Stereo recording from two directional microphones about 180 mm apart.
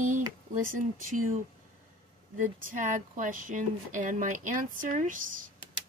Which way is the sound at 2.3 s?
45° right (ahead or behind).